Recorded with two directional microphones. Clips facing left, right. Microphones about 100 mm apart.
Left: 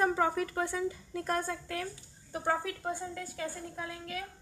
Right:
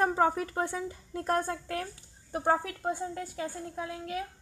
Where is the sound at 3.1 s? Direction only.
20° right (ahead or behind).